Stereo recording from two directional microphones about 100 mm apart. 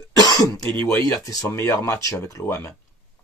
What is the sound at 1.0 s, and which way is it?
Speech, 35° left (ahead or behind).